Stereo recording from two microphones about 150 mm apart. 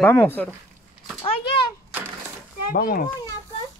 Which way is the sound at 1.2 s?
40° left (ahead or behind).